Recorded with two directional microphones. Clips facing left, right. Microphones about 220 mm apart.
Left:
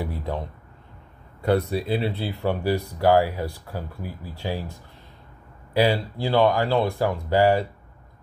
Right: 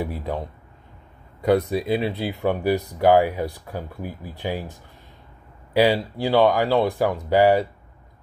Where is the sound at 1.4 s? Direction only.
15° right (ahead or behind).